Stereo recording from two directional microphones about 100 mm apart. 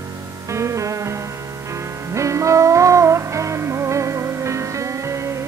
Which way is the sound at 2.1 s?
30° right (ahead or behind).